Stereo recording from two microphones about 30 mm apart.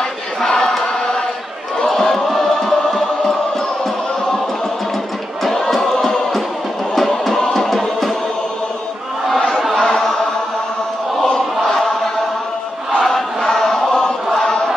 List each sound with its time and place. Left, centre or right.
0.4 s choir: left
1.9 s choir: centre
5.4 s a sound: centre
7.5 s music: centre
9.8 s chant: left
11.2 s choir: centre
13.0 s chant: centre